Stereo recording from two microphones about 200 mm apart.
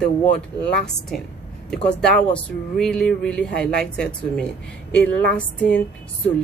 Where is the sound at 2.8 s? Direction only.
5° left (ahead or behind).